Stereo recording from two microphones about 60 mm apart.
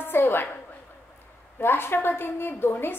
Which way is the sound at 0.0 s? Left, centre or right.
Left.